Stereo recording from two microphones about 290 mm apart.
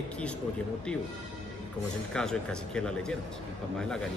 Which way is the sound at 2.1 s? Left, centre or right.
Centre.